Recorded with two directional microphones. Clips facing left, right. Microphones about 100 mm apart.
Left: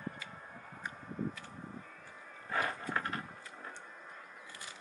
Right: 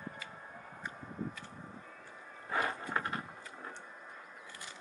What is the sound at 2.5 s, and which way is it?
Horse, 20° right (ahead or behind).